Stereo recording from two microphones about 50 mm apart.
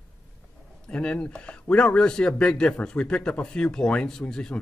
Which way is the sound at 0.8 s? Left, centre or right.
Centre.